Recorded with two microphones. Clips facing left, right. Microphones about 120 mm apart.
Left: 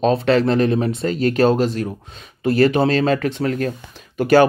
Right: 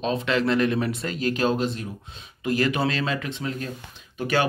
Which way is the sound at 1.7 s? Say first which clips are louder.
Left 9 dB; 55° left (ahead or behind).